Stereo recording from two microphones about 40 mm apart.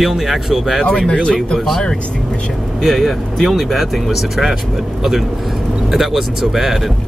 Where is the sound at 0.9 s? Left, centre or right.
Left.